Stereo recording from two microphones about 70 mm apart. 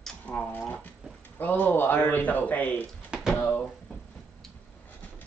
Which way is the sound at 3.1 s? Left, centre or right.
Centre.